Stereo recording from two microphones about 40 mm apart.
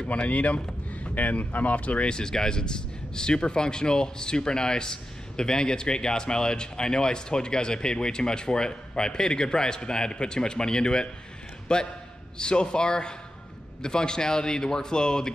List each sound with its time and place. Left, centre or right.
0.3 s speech: left
2.0 s a man's voice: centre